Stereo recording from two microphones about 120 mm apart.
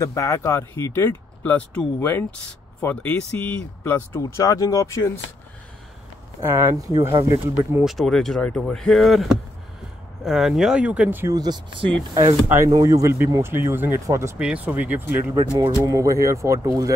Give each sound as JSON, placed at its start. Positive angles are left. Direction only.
{"t": 0.0, "sound": "speech", "side_deg": 25}
{"t": 4.4, "sound": "speech", "side_deg": 30}
{"t": 6.4, "sound": "speech", "side_deg": -20}
{"t": 7.8, "sound": "speech", "side_deg": 0}
{"t": 11.2, "sound": "speech", "side_deg": -35}
{"t": 12.4, "sound": "speech", "side_deg": -25}
{"t": 14.4, "sound": "speech", "side_deg": -10}
{"t": 15.8, "sound": "speech", "side_deg": -25}